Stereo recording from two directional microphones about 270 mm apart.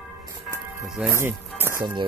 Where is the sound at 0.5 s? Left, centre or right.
Centre.